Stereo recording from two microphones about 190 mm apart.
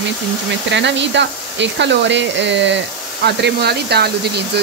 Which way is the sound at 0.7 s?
70° right (ahead or behind).